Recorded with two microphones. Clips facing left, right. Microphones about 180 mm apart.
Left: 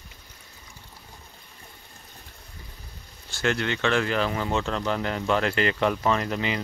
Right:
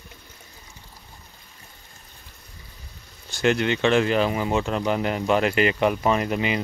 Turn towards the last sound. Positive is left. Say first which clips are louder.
# right 3 dB
turn(degrees=-15)  # may be behind; listen again after turning